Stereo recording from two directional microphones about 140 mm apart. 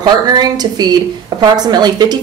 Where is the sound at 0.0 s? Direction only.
30° right (ahead or behind).